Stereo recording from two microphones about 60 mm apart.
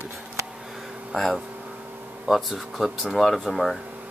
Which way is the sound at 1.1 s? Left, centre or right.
Centre.